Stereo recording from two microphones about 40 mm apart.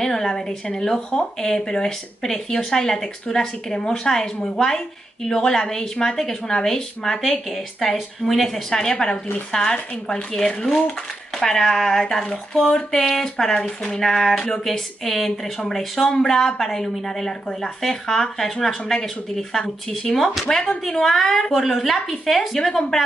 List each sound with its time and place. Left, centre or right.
0.0 s a woman's voice: centre
14.7 s a woman's voice: centre